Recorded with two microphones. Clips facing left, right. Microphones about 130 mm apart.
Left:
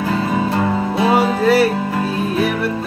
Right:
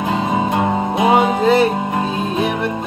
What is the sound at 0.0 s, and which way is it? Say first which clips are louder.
Music: even; 20° right (ahead or behind).